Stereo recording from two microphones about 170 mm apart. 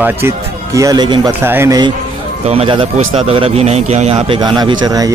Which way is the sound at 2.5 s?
30° right (ahead or behind).